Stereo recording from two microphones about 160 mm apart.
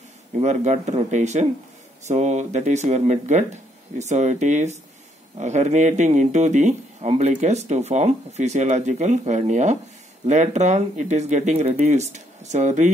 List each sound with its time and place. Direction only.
0.4 s speech: 45° right (ahead or behind)